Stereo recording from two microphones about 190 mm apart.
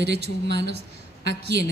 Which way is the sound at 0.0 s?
60° right (ahead or behind).